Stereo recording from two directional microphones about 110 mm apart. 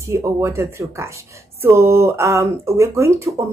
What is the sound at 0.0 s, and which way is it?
Speech, 25° right (ahead or behind).